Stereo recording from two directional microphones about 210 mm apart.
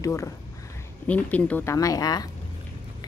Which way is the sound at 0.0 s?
15° left (ahead or behind).